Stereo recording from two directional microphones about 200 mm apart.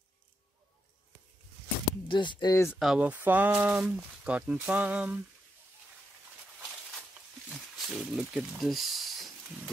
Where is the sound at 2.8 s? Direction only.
5° right (ahead or behind).